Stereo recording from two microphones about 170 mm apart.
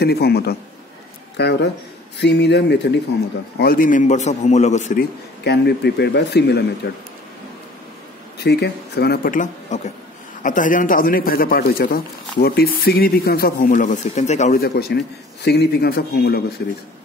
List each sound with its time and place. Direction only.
0.0 s speech: 70° left (ahead or behind)
1.3 s speech: 85° left
3.5 s a man's voice: 60° left (ahead or behind); by 4.9 s 45° left (ahead or behind)
4.9 s speech: 80° left
8.4 s a man's voice: 75° left (ahead or behind); by 14.5 s 45° left (ahead or behind)
14.5 s speech: 65° left (ahead or behind)